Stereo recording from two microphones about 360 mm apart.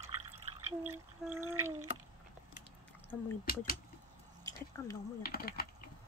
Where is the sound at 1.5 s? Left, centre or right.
Centre.